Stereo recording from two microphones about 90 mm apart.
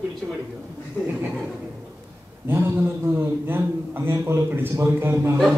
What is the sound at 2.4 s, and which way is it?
A man's voice, 25° right (ahead or behind).